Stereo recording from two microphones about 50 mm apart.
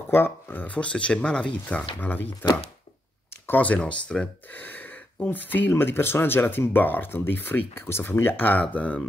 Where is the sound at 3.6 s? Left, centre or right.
Left.